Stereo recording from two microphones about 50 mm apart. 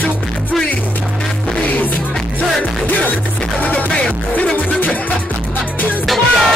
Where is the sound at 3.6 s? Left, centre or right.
Left.